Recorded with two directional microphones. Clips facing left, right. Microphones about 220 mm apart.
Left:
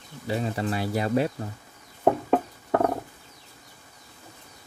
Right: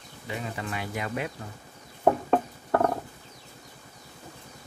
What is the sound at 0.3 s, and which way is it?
Speech, 35° left (ahead or behind).